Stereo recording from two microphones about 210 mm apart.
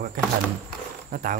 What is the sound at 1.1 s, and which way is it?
Speech, 40° right (ahead or behind).